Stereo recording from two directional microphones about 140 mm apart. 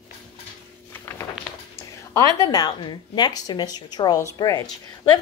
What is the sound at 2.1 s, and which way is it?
A woman's voice, 25° left (ahead or behind).